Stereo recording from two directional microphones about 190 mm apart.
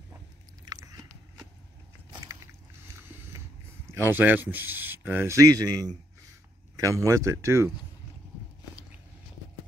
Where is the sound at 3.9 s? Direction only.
10° right (ahead or behind).